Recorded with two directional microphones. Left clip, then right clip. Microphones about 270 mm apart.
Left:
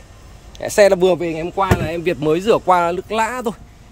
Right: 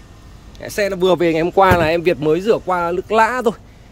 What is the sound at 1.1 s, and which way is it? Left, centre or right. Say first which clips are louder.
Speech: right 6 dB; centre.